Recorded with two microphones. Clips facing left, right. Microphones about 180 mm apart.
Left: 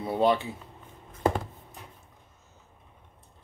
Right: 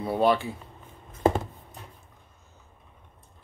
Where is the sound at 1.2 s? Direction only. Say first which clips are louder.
Right 3 dB; 25° right (ahead or behind).